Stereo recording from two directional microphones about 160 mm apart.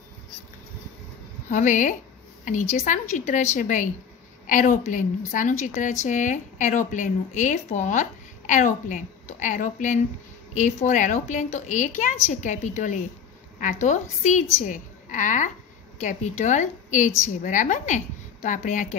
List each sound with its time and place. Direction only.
1.5 s speech: 50° left (ahead or behind)